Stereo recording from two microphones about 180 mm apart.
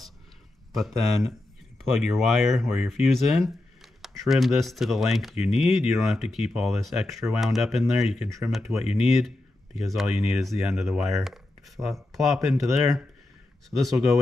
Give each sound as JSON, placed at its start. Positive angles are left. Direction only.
{"t": 0.7, "sound": "speech", "side_deg": 0}